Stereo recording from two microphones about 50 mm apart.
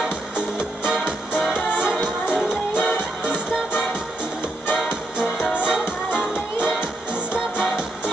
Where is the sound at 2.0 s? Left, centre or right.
Centre.